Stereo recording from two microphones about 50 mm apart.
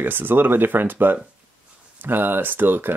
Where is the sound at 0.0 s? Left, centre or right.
Right.